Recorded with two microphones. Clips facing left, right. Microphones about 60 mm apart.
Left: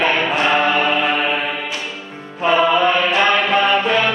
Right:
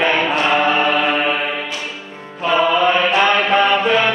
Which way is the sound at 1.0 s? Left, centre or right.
Centre.